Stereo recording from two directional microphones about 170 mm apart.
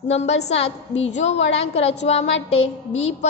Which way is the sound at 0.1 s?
40° left (ahead or behind).